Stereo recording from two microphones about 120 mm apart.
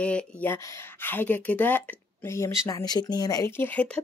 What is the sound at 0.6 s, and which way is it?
Speech, 25° left (ahead or behind).